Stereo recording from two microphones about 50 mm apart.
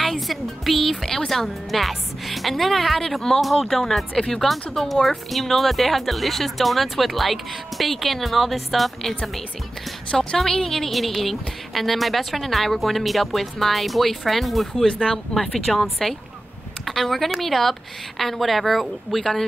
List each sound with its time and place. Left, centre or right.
0.0 s a woman's voice: centre
14.9 s speech: left
15.3 s a woman's voice: centre